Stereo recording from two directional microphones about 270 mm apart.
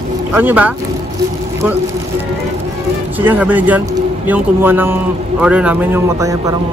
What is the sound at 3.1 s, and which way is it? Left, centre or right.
Speech, centre.